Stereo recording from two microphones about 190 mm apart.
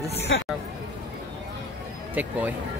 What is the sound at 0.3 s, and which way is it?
Speech, 75° left (ahead or behind).